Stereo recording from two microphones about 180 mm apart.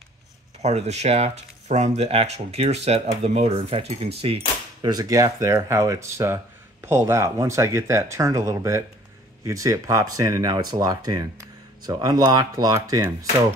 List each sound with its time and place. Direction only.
0.6 s speech: 35° right (ahead or behind); by 13.3 s 20° right (ahead or behind)